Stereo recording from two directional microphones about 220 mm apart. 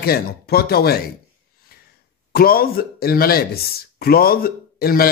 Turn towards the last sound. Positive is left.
turn(degrees=45)  # may be behind; listen again after turning